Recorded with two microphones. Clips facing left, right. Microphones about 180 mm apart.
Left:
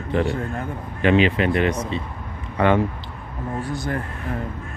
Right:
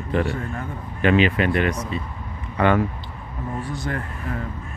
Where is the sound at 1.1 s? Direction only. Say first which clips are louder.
Left 1 dB; 25° left (ahead or behind).